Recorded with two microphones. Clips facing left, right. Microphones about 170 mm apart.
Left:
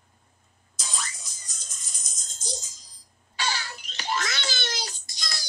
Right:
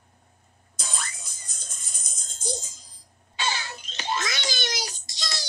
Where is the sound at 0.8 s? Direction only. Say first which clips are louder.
Right 1 dB; 55° right (ahead or behind).